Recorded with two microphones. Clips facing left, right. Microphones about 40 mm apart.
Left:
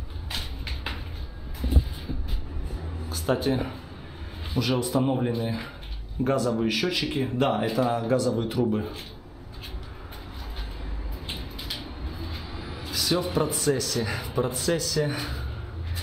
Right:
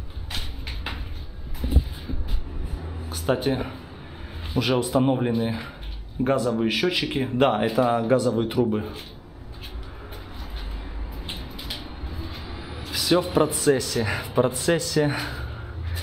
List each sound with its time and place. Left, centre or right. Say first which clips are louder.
0.3 s a sound: even; centre
3.2 s speech: right 1 dB; centre
4.6 s speech: right 3 dB; right
5.1 s speech: right 3 dB; centre
8.6 s speech: right 1 dB; centre
11.2 s vehicle: even; centre
12.9 s speech: right 5 dB; centre